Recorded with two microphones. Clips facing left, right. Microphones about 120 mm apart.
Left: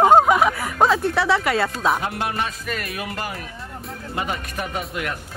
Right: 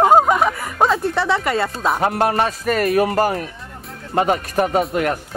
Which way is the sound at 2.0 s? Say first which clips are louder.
Right 8 dB; 45° right (ahead or behind).